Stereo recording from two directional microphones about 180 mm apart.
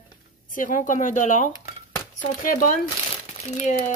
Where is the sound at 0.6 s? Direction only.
50° left (ahead or behind).